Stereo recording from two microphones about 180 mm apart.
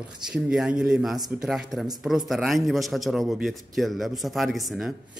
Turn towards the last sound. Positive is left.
turn(degrees=0)  # may be behind; listen again after turning